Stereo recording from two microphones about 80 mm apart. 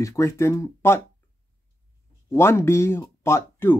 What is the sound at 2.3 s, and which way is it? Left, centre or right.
Speech, left.